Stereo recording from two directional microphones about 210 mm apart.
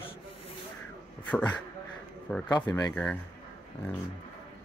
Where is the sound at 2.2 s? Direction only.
5° left (ahead or behind).